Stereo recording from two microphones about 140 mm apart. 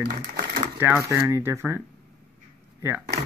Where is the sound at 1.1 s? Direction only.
20° right (ahead or behind).